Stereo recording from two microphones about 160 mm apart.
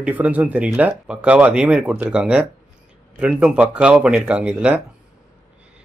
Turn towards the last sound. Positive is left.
turn(degrees=-10)  # may be behind; listen again after turning